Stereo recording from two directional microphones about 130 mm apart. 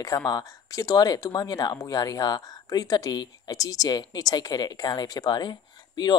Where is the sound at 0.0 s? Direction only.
25° left (ahead or behind).